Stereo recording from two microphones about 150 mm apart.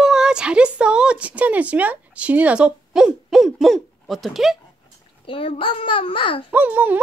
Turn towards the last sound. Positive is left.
turn(degrees=-10)  # may be behind; listen again after turning